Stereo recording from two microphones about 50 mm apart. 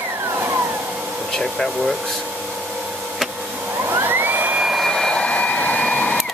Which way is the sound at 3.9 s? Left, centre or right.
Right.